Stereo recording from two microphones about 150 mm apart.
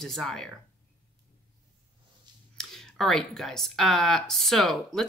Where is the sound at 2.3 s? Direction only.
30° right (ahead or behind).